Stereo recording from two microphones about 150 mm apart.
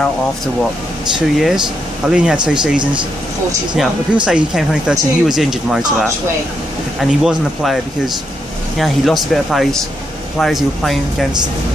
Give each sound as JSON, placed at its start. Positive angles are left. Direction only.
{"t": 1.1, "sound": "speech", "side_deg": -5}
{"t": 2.8, "sound": "speech", "side_deg": -30}
{"t": 3.7, "sound": "speech", "side_deg": -5}
{"t": 7.1, "sound": "speech", "side_deg": 0}